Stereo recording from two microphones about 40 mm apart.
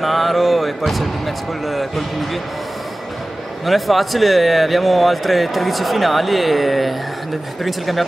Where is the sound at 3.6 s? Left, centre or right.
Centre.